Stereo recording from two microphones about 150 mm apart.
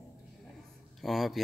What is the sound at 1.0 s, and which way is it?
Speech, centre (ahead or behind).